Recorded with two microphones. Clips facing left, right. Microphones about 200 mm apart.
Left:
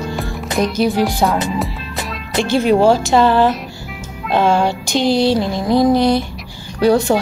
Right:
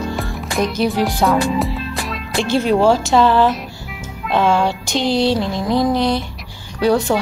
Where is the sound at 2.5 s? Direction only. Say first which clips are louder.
Left 2 dB; 5° left (ahead or behind).